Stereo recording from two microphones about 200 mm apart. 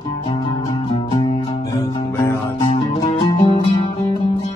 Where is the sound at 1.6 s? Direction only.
15° left (ahead or behind).